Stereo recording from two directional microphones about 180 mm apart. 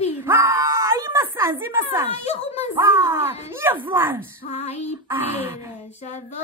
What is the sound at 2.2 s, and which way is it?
Speech, 35° left (ahead or behind).